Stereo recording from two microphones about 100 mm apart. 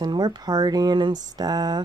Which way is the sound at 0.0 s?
45° right (ahead or behind).